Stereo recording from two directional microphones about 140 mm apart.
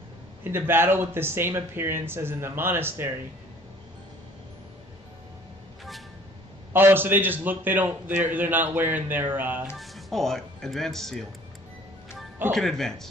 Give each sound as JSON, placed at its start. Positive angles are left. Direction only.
{"t": 0.4, "sound": "a man's voice", "side_deg": -15}
{"t": 6.7, "sound": "a man's voice", "side_deg": -15}
{"t": 9.8, "sound": "speech", "side_deg": 0}
{"t": 12.5, "sound": "speech", "side_deg": 5}